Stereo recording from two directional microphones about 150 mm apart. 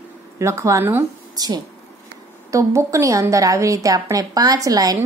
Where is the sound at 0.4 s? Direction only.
20° right (ahead or behind).